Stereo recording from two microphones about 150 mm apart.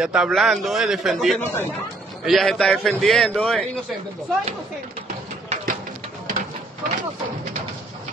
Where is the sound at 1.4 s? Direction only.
15° left (ahead or behind).